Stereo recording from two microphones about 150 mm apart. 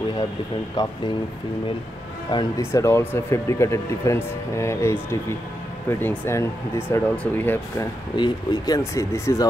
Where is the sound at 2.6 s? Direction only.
20° left (ahead or behind).